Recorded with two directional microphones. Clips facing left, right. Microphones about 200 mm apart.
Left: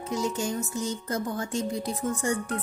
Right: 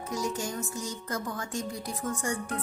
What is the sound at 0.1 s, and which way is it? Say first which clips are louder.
Speech: left 4 dB; 25° left (ahead or behind).